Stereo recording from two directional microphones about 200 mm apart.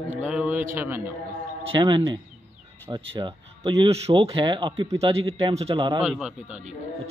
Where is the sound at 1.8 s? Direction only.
25° right (ahead or behind).